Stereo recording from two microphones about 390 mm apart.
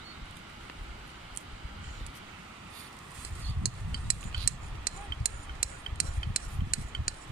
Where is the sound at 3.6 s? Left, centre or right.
Left.